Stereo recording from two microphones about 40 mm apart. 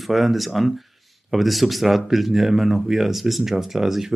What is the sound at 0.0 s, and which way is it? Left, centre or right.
Speech, centre.